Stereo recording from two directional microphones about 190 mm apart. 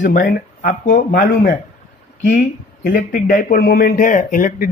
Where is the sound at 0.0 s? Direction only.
45° left (ahead or behind).